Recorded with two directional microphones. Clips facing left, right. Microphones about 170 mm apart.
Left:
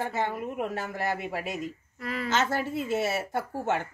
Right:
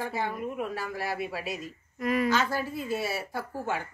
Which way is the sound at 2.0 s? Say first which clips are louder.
Right 7 dB; 15° right (ahead or behind).